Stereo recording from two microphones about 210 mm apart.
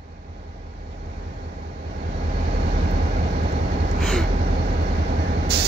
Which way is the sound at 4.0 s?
Centre (ahead or behind).